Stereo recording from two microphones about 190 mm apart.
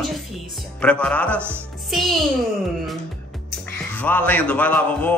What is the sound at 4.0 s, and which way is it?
Speech, 10° left (ahead or behind).